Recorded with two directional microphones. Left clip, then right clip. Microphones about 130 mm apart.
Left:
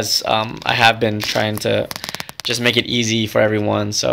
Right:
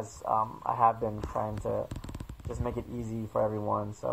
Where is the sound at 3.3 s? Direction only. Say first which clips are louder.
Left 11 dB; 40° left (ahead or behind).